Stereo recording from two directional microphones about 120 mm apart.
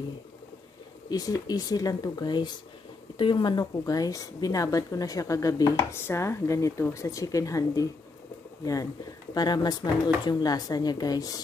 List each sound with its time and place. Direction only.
1.0 s speech: 30° left (ahead or behind)
9.3 s speech: 35° left (ahead or behind)